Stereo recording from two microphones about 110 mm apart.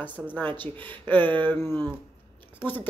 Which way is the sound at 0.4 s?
15° left (ahead or behind).